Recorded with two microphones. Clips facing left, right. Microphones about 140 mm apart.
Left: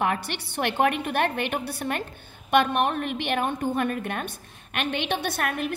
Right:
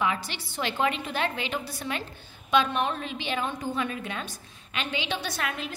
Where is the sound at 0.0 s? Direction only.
60° left (ahead or behind).